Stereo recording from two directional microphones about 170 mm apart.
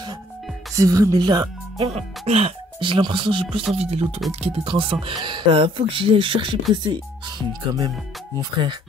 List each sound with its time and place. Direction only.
0.7 s speech: 20° right (ahead or behind)
1.9 s speech: 35° right (ahead or behind)